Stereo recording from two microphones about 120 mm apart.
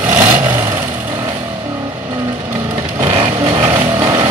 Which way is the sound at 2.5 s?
25° right (ahead or behind).